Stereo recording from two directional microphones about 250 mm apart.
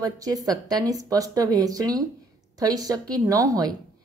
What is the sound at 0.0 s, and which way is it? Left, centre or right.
A woman's voice, centre.